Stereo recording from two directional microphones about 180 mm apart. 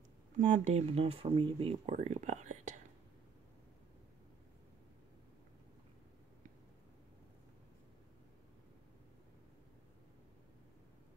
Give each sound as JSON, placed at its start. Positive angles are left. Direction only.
{"t": 0.4, "sound": "speech", "side_deg": -45}